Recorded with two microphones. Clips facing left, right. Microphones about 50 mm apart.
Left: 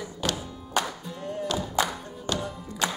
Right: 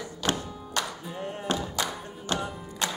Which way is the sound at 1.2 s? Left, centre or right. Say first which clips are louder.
Left 1 dB; right.